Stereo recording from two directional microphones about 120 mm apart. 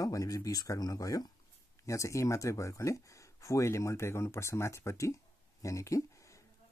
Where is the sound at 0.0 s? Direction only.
30° left (ahead or behind).